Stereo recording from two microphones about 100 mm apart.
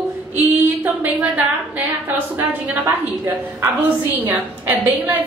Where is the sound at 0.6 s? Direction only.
20° right (ahead or behind).